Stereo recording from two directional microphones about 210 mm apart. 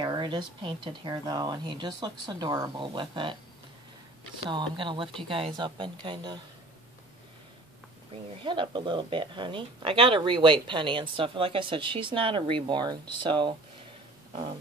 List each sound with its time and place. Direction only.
0.0 s speech: 20° right (ahead or behind)
4.5 s speech: 25° right (ahead or behind)
8.5 s speech: 20° right (ahead or behind)